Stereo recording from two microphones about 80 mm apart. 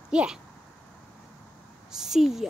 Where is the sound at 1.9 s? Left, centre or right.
Centre.